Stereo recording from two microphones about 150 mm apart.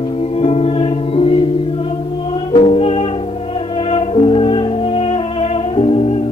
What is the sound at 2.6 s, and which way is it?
Music, 40° left (ahead or behind).